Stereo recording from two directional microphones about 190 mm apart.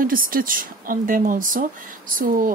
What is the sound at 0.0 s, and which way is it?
Speech, 50° right (ahead or behind).